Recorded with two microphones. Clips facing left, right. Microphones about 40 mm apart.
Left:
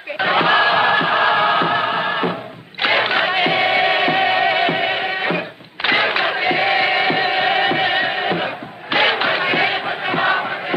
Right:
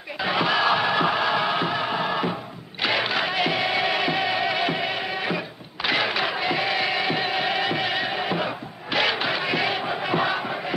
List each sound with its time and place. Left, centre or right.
0.2 s music: left
8.9 s crowd: left